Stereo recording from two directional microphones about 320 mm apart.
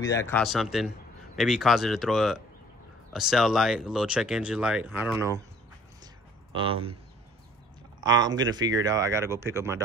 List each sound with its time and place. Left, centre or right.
0.0 s speech: centre
6.5 s speech: centre
8.0 s speech: centre